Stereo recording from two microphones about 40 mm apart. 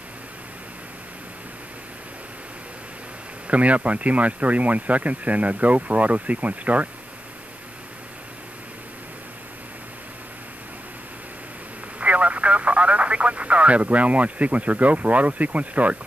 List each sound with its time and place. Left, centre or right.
3.4 s speech: right
12.0 s telephone: right